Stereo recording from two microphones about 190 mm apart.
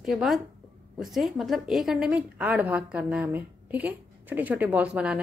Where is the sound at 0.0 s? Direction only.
Centre (ahead or behind).